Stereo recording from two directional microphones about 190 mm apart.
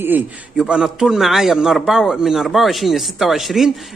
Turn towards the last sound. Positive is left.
turn(degrees=0)  # may be behind; listen again after turning